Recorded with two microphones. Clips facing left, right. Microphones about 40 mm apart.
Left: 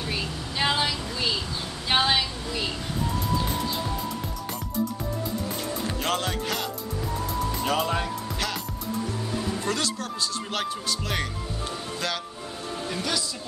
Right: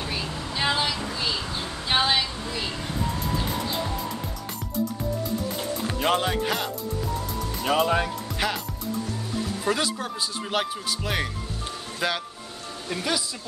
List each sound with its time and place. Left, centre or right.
0.1 s a sound: centre
5.9 s music: centre
9.7 s speech: centre
12.9 s speech: centre